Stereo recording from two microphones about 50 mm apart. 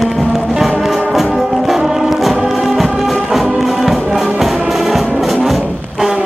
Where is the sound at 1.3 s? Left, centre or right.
Centre.